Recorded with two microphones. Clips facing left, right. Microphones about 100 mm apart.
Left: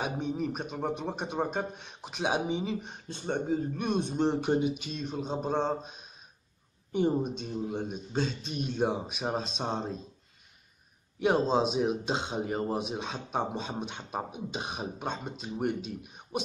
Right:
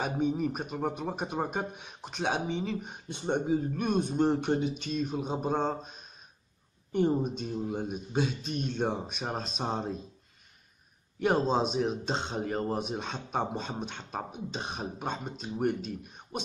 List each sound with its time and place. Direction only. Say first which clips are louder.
0.0 s speech: right 3 dB; centre (ahead or behind)
3.1 s speech: right 2 dB; 15° right (ahead or behind)
3.4 s speech: right 1 dB; 5° right (ahead or behind)
4.5 s speech: left 1 dB; 10° left (ahead or behind)
11.1 s speech: left 1 dB; centre (ahead or behind)